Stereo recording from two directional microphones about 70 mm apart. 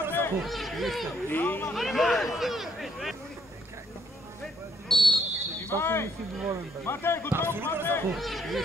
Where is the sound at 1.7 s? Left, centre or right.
Centre.